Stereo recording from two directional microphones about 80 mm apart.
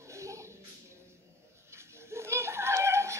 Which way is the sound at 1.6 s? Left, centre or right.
Right.